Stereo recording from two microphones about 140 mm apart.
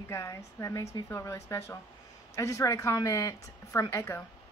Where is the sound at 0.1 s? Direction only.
20° left (ahead or behind).